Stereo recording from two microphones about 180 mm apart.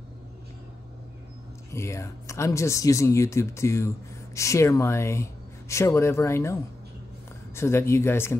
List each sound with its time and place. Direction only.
1.7 s speech: 15° left (ahead or behind)